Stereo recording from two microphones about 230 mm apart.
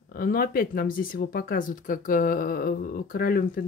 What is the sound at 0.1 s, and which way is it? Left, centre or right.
Speech, left.